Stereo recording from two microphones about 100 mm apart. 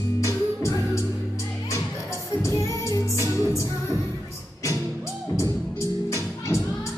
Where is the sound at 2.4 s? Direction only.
30° left (ahead or behind).